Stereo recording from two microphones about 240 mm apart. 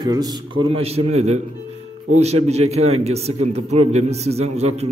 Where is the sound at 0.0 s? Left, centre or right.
Centre.